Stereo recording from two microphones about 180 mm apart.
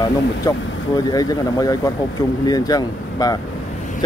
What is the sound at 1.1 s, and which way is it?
Speech, 20° left (ahead or behind).